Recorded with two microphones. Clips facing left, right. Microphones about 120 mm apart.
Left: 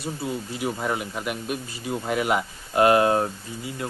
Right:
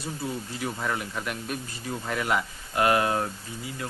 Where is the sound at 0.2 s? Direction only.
10° left (ahead or behind).